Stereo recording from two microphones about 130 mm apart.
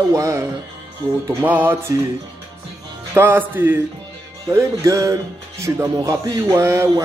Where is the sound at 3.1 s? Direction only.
15° right (ahead or behind).